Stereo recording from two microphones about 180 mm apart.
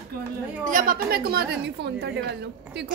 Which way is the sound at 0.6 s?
50° right (ahead or behind).